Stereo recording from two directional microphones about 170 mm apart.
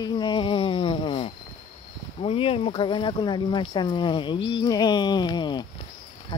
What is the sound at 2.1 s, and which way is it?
Speech, 35° left (ahead or behind).